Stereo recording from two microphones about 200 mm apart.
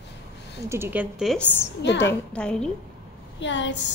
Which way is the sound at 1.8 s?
60° left (ahead or behind).